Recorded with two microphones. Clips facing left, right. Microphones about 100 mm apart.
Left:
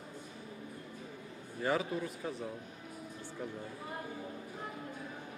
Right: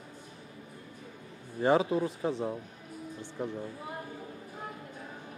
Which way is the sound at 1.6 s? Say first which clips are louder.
Right 8 dB; 25° right (ahead or behind).